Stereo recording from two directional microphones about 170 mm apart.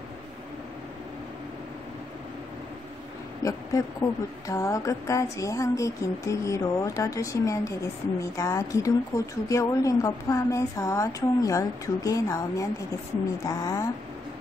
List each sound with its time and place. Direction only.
3.4 s speech: 20° left (ahead or behind)